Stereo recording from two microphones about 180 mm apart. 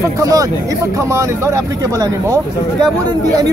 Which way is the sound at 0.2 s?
20° right (ahead or behind).